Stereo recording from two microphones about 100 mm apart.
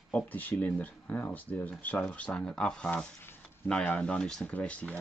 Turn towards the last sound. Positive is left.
turn(degrees=15)  # may be behind; listen again after turning